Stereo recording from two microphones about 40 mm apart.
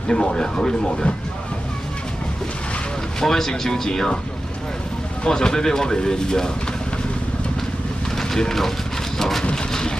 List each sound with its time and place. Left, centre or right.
0.1 s speech: centre
3.2 s speech: centre
5.2 s speech: centre
8.2 s speech: centre
9.4 s a sound: left
9.7 s vehicle: centre